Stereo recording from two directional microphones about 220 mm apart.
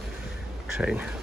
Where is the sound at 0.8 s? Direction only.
5° right (ahead or behind).